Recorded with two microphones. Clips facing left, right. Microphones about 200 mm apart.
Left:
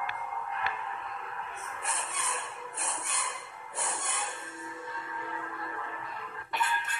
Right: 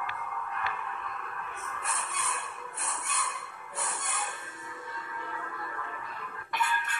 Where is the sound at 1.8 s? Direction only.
25° left (ahead or behind).